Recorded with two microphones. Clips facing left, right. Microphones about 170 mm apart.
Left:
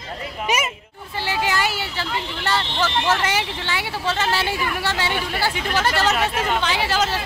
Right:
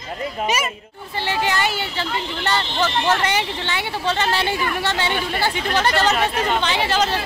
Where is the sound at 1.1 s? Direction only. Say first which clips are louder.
Right 1 dB; 5° left (ahead or behind).